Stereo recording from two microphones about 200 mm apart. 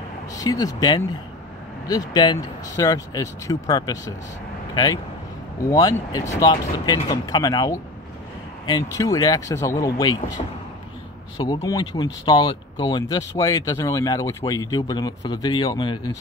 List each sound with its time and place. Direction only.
0.3 s speech: 20° left (ahead or behind)